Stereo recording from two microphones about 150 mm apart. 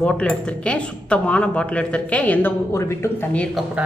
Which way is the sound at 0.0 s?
5° left (ahead or behind).